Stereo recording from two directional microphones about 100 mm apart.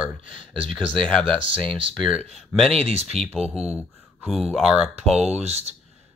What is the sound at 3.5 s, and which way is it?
Speech, 10° right (ahead or behind).